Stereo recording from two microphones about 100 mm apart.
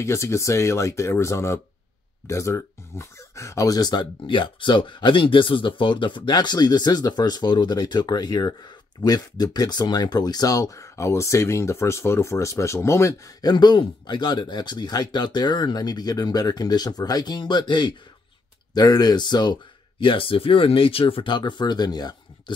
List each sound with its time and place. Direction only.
0.0 s speech: 30° left (ahead or behind)
13.4 s speech: 45° left (ahead or behind)
18.7 s speech: 40° left (ahead or behind)
20.0 s speech: 65° left (ahead or behind); by 22.1 s 45° left (ahead or behind)